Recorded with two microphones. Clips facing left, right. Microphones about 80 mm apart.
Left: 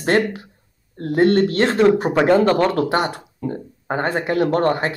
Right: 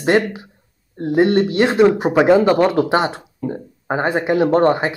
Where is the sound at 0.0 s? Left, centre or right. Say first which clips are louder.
Right 2 dB; centre.